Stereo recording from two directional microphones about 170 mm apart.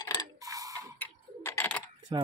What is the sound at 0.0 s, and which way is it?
Mechanisms, 20° left (ahead or behind).